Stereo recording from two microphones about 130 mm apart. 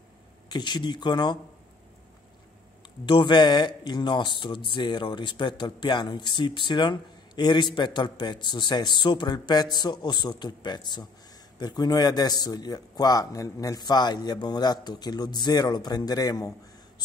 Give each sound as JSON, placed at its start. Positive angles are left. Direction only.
{"t": 0.5, "sound": "speech", "side_deg": 35}
{"t": 3.1, "sound": "speech", "side_deg": 40}